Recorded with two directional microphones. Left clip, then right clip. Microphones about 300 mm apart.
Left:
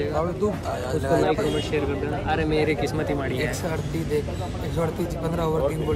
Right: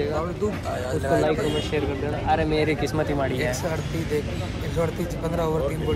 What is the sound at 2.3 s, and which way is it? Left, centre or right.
Speech, centre.